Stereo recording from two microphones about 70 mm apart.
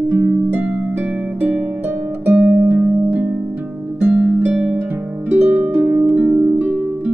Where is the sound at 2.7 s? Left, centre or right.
Right.